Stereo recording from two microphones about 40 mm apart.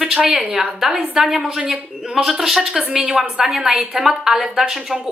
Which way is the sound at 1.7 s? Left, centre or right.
Centre.